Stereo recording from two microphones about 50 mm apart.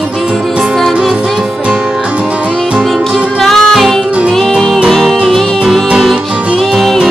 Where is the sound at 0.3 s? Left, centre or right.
Centre.